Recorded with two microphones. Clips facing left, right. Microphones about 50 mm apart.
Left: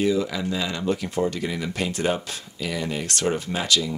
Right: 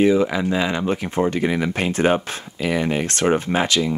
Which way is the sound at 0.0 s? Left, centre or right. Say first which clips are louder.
Right 6 dB; right.